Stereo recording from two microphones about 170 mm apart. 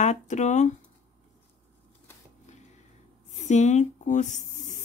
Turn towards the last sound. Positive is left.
turn(degrees=45)  # may be behind; listen again after turning